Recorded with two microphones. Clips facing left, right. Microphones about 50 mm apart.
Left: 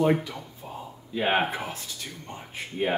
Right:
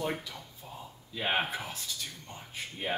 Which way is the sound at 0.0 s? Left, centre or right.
Left.